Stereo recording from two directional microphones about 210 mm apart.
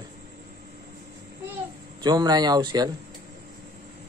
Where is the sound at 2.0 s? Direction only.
20° right (ahead or behind).